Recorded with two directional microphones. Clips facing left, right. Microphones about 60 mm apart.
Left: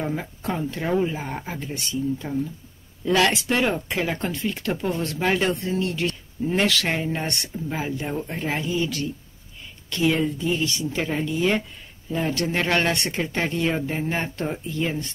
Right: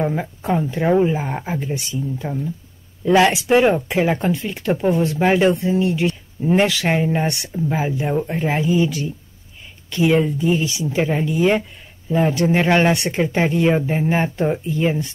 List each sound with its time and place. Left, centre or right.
0.0 s speech: centre